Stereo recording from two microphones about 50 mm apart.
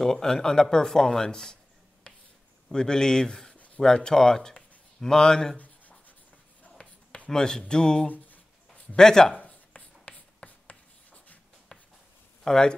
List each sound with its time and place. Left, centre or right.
0.0 s speech: centre
2.1 s a sound: left
2.7 s speech: centre
3.5 s a sound: left
3.8 s speech: centre
5.6 s writing: left
7.2 s speech: centre
8.1 s a sound: left
8.9 s speech: centre
9.4 s writing: left
11.7 s a sound: centre
12.4 s speech: centre